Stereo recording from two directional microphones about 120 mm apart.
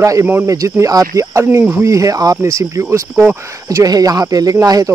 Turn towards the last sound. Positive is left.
turn(degrees=-30)  # may be behind; listen again after turning